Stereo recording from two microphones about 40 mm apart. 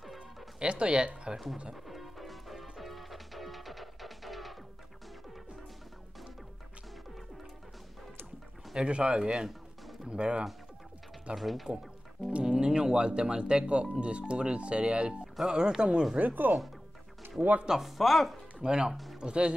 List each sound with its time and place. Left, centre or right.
0.6 s speech: right
1.9 s music: centre
8.8 s speech: right
11.3 s speech: centre
12.3 s speech: right
16.2 s speech: right
17.6 s speech: centre
18.6 s speech: right